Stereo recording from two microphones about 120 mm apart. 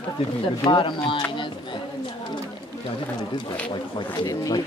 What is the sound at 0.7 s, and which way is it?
Speech, 45° left (ahead or behind).